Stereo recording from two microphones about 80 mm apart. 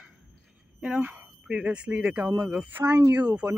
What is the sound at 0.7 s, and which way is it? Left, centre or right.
Speech, centre.